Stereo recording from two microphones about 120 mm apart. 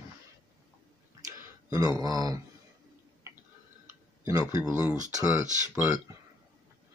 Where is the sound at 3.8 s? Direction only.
25° right (ahead or behind).